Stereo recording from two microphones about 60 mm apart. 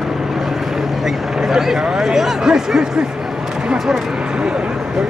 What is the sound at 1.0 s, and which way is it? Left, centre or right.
Speech, centre.